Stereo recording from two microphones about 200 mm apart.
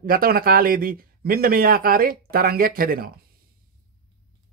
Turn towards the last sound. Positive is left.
turn(degrees=-45)  # may be behind; listen again after turning